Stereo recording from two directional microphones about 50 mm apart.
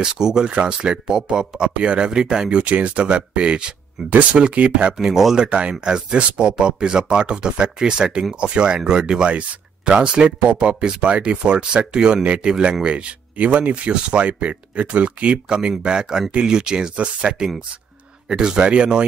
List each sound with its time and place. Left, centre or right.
0.0 s speech: centre
2.6 s speech: right
4.9 s speech: centre; by 15.3 s right
15.3 s speech: centre